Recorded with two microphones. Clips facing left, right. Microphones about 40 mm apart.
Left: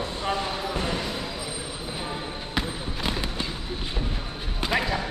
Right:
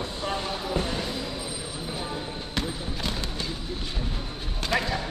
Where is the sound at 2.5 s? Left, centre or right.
Centre.